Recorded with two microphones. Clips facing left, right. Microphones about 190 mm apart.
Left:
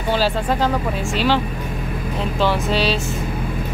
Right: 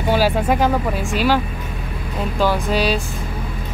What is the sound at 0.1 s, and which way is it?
Speech, 10° right (ahead or behind).